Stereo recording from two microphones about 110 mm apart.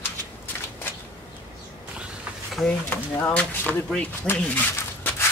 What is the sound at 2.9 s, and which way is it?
Speech, 15° left (ahead or behind).